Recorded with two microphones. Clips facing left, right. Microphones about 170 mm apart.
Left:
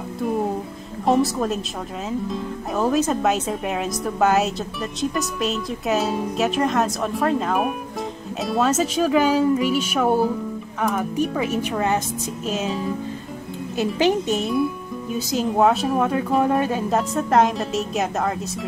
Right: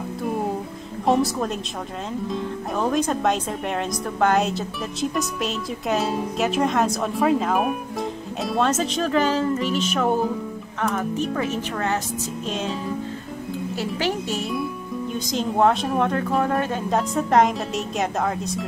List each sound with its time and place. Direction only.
1.0 s speech: centre (ahead or behind)
13.7 s speech: 20° left (ahead or behind)
15.1 s speech: 5° left (ahead or behind)